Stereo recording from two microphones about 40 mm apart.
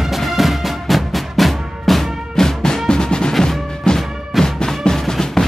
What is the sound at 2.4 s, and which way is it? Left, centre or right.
Music, centre.